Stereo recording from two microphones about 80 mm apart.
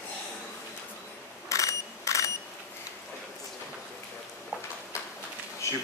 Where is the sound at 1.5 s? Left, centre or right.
Left.